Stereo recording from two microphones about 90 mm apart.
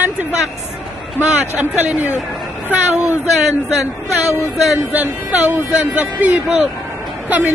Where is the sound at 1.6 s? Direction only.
20° right (ahead or behind).